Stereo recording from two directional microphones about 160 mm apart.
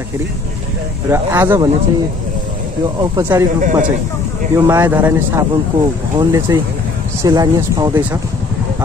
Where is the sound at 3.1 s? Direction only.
20° right (ahead or behind).